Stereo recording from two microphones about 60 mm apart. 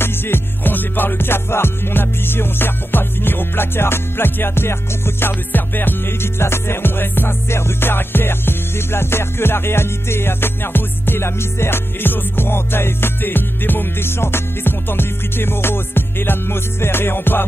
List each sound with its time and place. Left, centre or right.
0.0 s music: left